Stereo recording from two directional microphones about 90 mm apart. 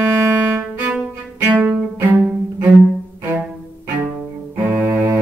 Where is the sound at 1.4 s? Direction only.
20° right (ahead or behind).